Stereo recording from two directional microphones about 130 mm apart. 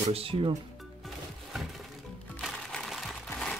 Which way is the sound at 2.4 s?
5° left (ahead or behind).